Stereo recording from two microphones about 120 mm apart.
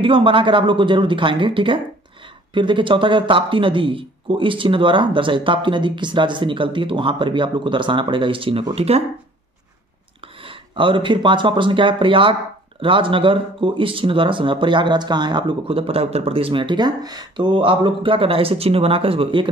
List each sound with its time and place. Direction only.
0.0 s speech: 45° right (ahead or behind)
10.4 s speech: 45° right (ahead or behind)